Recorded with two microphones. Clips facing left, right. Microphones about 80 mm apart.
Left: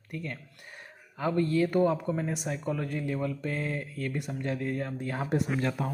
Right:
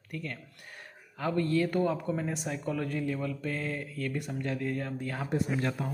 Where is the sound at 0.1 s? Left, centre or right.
Centre.